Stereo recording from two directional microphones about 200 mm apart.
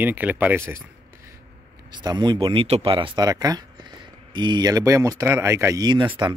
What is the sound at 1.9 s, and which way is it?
Speech, 20° right (ahead or behind).